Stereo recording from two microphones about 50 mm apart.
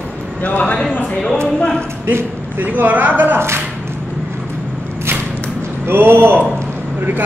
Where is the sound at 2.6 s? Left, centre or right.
Right.